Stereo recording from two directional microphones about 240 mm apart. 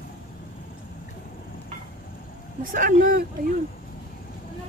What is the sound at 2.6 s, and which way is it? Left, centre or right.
Speech, right.